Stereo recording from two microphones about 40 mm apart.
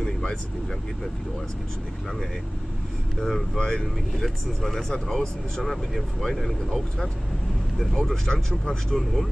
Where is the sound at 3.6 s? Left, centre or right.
Centre.